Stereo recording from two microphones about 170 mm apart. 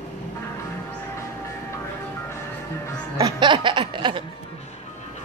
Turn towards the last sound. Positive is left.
turn(degrees=-30)  # may be behind; listen again after turning